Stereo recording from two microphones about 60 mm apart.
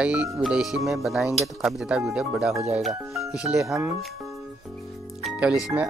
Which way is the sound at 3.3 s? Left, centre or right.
Centre.